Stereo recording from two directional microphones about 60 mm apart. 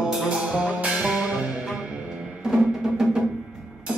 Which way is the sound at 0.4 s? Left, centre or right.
Right.